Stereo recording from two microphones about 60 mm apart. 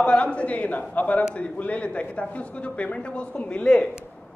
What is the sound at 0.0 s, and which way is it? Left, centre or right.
Speech, centre.